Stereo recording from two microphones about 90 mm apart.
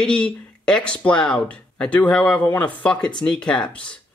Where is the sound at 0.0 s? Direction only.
10° left (ahead or behind).